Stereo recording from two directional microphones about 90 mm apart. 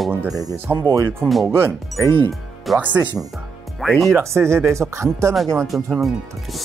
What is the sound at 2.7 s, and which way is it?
Speech, 15° right (ahead or behind).